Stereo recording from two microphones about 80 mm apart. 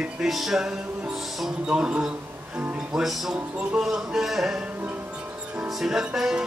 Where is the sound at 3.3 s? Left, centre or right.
Centre.